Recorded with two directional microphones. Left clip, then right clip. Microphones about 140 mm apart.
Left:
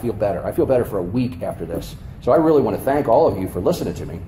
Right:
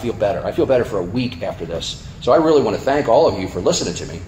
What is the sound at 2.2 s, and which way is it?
Speech, 30° left (ahead or behind).